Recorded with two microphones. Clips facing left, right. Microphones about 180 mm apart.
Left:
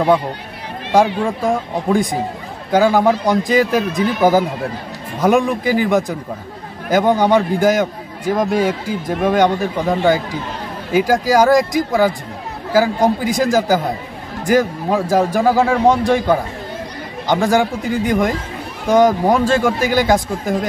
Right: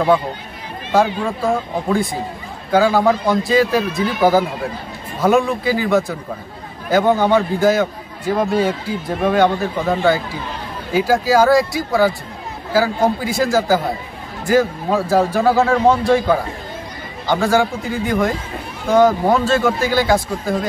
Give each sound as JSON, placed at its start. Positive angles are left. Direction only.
{"t": 1.4, "sound": "a man's voice", "side_deg": 15}